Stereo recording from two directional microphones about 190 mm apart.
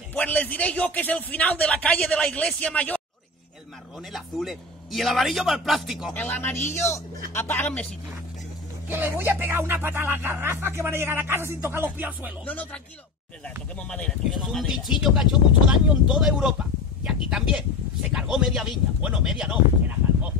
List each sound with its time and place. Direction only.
0.1 s a man's voice: 10° left (ahead or behind)
4.1 s a man's voice: centre (ahead or behind)
6.1 s a man's voice: 10° left (ahead or behind)
8.8 s speech: 10° right (ahead or behind)
12.4 s a man's voice: 10° left (ahead or behind)